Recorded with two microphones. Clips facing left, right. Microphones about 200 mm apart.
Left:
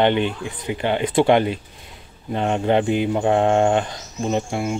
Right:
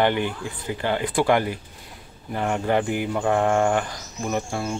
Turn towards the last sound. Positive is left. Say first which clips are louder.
# left 4 dB
turn(degrees=20)  # may be behind; listen again after turning